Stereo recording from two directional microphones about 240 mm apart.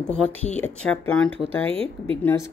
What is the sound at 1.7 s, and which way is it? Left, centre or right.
Speech, right.